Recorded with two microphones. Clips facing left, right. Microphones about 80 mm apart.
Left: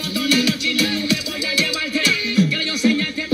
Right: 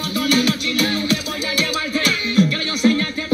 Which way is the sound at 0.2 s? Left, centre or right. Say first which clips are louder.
Right 1 dB; right.